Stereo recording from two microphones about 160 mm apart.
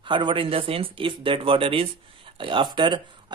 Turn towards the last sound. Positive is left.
turn(degrees=-30)  # may be behind; listen again after turning